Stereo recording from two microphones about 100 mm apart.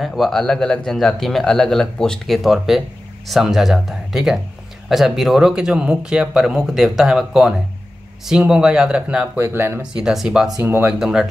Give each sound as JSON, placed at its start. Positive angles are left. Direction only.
{"t": 0.0, "sound": "speech", "side_deg": 0}
{"t": 9.4, "sound": "speech", "side_deg": -25}
{"t": 9.9, "sound": "speech", "side_deg": -5}
{"t": 10.6, "sound": "speech", "side_deg": -20}
{"t": 10.9, "sound": "speech", "side_deg": -5}